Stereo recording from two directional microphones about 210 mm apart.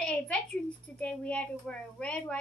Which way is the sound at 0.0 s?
5° left (ahead or behind).